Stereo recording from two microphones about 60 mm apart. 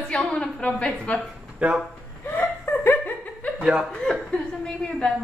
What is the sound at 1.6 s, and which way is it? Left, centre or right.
Speech, right.